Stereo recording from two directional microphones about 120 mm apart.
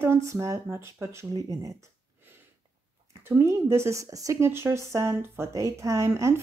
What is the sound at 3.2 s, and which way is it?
Speech, 20° right (ahead or behind).